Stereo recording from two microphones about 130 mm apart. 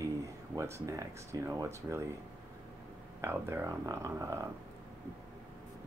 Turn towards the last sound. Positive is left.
turn(degrees=-20)  # may be behind; listen again after turning